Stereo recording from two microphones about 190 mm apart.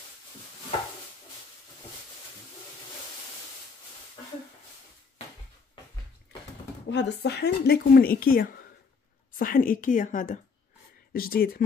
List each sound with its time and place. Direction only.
6.9 s a woman's voice: 65° left (ahead or behind)